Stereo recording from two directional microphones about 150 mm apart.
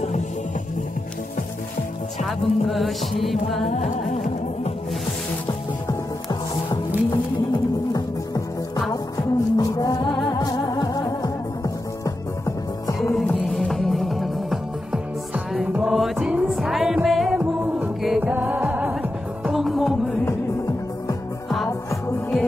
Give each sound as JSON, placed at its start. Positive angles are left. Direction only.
{"t": 2.2, "sound": "music", "side_deg": 0}
{"t": 8.9, "sound": "music", "side_deg": 20}
{"t": 13.1, "sound": "music", "side_deg": 0}